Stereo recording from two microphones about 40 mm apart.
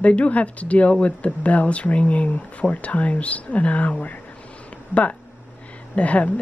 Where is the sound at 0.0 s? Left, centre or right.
Left.